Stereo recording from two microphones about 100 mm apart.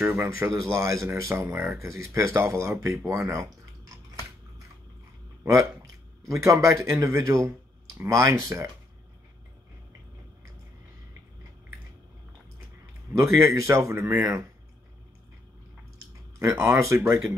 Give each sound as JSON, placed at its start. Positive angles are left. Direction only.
{"t": 0.0, "sound": "speech", "side_deg": -20}
{"t": 5.4, "sound": "speech", "side_deg": -35}
{"t": 13.2, "sound": "speech", "side_deg": -30}
{"t": 16.6, "sound": "speech", "side_deg": -30}